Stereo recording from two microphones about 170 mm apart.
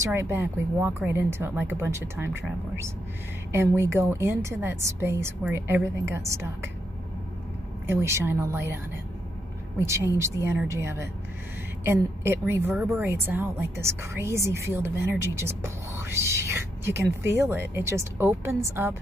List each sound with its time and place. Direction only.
0.0 s a woman's voice: 15° right (ahead or behind)
3.5 s a woman's voice: 15° right (ahead or behind)
7.8 s a woman's voice: 15° right (ahead or behind)